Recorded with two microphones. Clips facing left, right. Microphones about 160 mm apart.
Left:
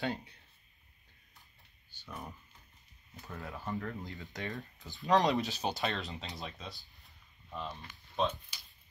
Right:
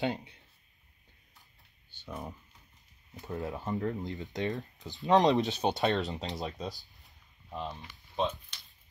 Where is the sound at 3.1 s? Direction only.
20° right (ahead or behind).